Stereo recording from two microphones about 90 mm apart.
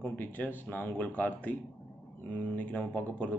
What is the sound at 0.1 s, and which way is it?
Speech, 20° left (ahead or behind).